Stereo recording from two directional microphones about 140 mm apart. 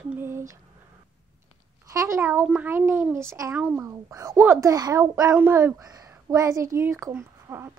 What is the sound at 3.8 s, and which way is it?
A woman's voice, 25° right (ahead or behind).